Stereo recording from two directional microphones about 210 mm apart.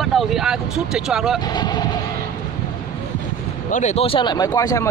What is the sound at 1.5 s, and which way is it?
Speech, 20° left (ahead or behind).